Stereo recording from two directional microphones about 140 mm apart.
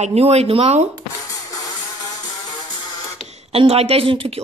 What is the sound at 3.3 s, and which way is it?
A woman's voice, 45° right (ahead or behind).